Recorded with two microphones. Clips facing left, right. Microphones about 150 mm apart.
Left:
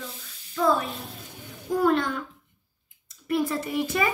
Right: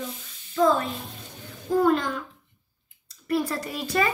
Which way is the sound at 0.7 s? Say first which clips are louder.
Left 1 dB; 10° left (ahead or behind).